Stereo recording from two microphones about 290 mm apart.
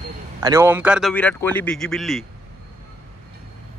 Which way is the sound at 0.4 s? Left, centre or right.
Centre.